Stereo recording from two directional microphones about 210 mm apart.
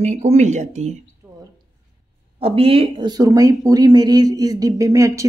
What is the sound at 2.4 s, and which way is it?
Speech, 25° right (ahead or behind).